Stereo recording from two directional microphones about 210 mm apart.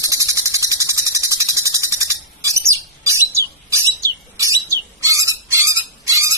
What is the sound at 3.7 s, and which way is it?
Bird, 15° right (ahead or behind).